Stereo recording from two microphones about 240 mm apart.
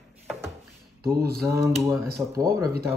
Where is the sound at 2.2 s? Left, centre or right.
Centre.